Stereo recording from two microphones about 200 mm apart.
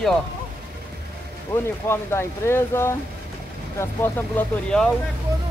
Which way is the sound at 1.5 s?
10° left (ahead or behind).